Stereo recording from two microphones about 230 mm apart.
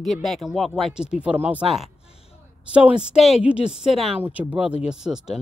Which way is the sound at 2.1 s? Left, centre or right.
Left.